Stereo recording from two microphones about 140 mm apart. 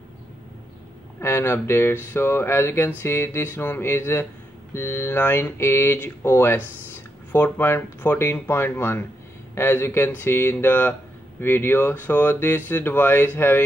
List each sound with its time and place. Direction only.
1.2 s speech: 20° left (ahead or behind)